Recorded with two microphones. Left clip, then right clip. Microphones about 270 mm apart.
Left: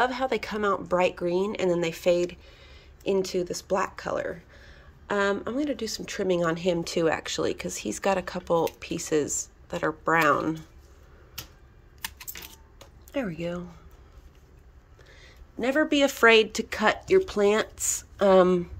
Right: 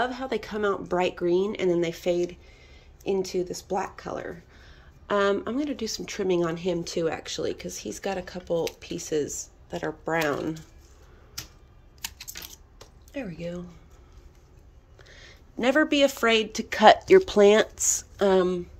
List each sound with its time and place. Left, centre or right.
0.0 s speech: centre
13.1 s speech: centre
15.1 s speech: centre